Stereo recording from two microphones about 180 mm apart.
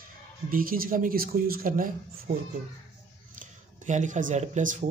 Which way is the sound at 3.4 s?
45° right (ahead or behind).